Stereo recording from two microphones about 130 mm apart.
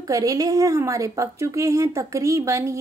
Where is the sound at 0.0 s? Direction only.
25° right (ahead or behind).